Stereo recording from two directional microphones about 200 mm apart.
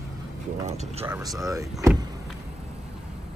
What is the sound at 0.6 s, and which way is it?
Speech, 35° right (ahead or behind).